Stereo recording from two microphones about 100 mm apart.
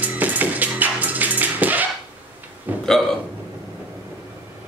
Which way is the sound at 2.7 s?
15° right (ahead or behind).